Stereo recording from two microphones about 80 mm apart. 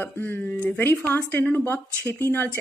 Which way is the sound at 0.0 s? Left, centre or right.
Left.